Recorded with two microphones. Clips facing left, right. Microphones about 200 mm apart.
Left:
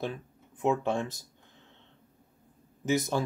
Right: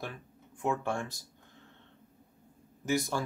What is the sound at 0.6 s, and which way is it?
Speech, 20° left (ahead or behind).